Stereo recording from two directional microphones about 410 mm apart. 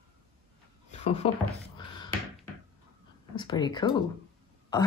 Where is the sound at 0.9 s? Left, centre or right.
Centre.